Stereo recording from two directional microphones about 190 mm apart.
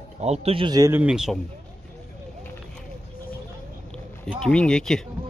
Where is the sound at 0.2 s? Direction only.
30° right (ahead or behind); by 1.4 s 5° right (ahead or behind).